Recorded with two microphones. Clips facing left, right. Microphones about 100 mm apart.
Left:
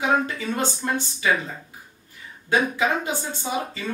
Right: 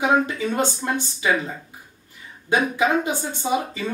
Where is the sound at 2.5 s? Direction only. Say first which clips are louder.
Right 2 dB; 15° right (ahead or behind).